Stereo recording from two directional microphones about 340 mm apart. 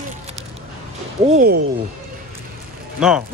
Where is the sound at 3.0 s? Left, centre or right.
Centre.